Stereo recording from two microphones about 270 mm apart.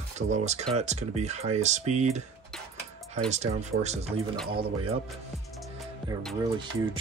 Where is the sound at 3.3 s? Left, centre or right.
Right.